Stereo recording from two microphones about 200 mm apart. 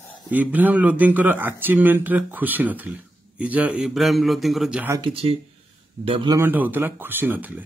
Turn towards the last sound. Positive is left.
turn(degrees=-10)  # may be behind; listen again after turning